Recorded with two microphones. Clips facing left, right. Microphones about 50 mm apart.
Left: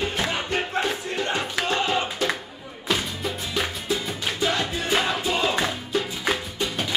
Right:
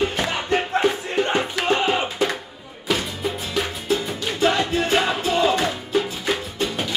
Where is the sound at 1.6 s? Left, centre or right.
Right.